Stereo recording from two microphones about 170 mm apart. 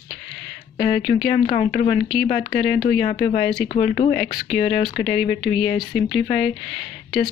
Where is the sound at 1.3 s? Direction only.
30° left (ahead or behind).